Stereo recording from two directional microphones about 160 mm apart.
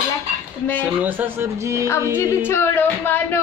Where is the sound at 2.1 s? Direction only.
15° left (ahead or behind).